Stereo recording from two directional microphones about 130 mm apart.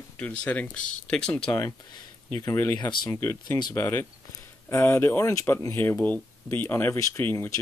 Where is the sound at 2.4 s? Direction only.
25° left (ahead or behind).